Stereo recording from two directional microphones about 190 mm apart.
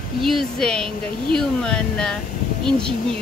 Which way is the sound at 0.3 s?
Centre (ahead or behind).